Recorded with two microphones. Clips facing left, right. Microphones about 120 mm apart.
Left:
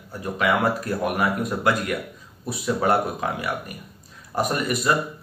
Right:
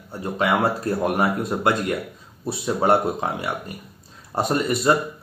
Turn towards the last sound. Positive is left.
turn(degrees=-30)  # may be behind; listen again after turning